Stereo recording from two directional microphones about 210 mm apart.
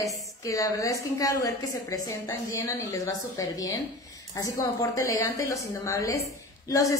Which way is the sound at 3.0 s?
15° left (ahead or behind).